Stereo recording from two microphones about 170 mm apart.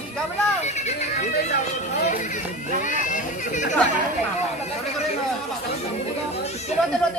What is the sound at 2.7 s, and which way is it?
Chatter, 50° left (ahead or behind).